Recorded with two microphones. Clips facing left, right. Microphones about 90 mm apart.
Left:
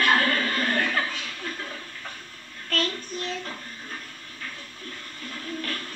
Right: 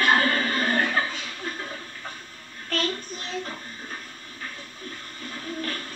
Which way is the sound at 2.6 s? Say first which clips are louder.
Even; 15° right (ahead or behind).